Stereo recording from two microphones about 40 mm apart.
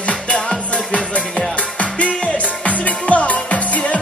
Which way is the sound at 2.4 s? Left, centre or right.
Left.